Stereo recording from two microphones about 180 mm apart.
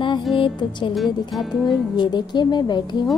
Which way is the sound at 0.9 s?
Centre (ahead or behind).